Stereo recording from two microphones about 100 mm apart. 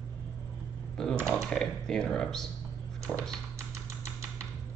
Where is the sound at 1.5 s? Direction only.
5° left (ahead or behind).